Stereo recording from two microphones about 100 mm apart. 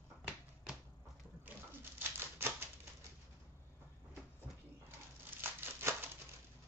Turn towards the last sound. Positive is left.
turn(degrees=-25)  # may be behind; listen again after turning